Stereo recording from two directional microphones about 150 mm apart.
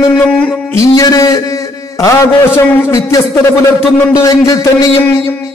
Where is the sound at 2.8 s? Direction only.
20° left (ahead or behind).